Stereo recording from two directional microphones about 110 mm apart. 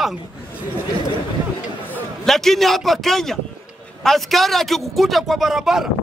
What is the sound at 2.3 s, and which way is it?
A man's voice, centre (ahead or behind).